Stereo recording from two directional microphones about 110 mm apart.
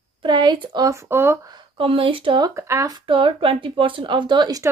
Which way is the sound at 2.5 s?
25° right (ahead or behind).